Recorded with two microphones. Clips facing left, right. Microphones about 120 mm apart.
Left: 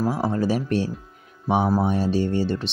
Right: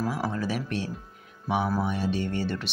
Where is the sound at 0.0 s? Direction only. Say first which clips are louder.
Left 6 dB; 35° left (ahead or behind).